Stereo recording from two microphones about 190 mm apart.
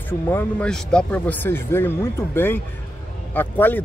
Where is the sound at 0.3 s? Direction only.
10° left (ahead or behind).